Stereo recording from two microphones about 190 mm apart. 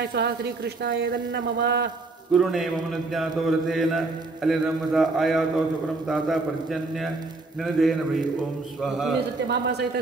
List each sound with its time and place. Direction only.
0.0 s speech: 60° right (ahead or behind)
2.3 s mantra: centre (ahead or behind)
9.5 s speech: 60° right (ahead or behind)